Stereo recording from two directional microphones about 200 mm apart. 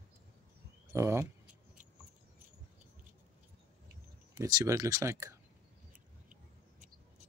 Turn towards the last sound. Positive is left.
turn(degrees=-15)  # may be behind; listen again after turning